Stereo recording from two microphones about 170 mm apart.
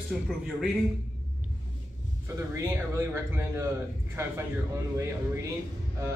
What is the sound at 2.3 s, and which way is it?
Speech, 15° right (ahead or behind).